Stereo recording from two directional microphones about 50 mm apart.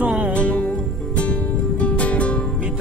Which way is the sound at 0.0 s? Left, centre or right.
Right.